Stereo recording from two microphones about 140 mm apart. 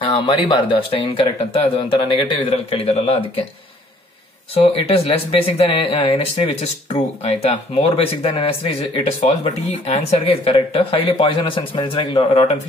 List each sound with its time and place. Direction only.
0.1 s speech: 35° left (ahead or behind)
4.6 s speech: 45° left (ahead or behind)